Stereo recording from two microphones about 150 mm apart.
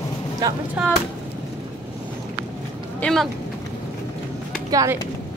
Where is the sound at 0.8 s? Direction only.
10° right (ahead or behind).